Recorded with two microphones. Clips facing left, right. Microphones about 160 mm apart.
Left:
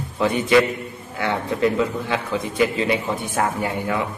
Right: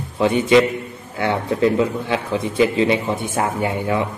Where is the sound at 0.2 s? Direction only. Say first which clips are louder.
Right 3 dB; 25° right (ahead or behind).